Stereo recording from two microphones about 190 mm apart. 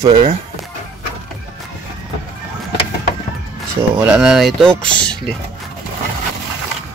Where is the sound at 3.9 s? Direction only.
5° right (ahead or behind).